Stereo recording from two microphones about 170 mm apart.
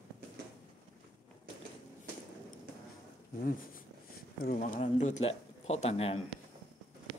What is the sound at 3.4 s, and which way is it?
Speech, 55° left (ahead or behind).